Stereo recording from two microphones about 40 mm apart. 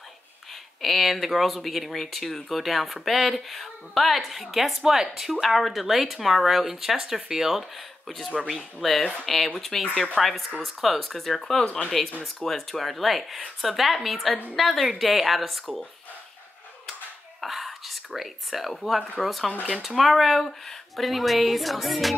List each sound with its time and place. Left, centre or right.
0.8 s speech: centre
8.4 s speech: centre
11.6 s speech: left
12.2 s speech: centre
17.4 s speech: centre